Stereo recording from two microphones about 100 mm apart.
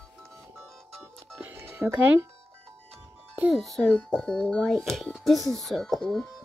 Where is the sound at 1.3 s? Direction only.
20° right (ahead or behind).